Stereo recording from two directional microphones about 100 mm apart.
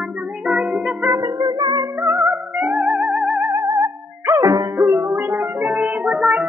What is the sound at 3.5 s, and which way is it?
Music, 30° right (ahead or behind).